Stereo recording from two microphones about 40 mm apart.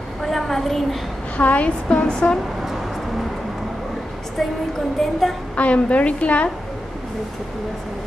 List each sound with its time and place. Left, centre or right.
0.2 s a sound: centre
1.3 s a woman's voice: left
4.4 s speech: centre
5.6 s a woman's voice: left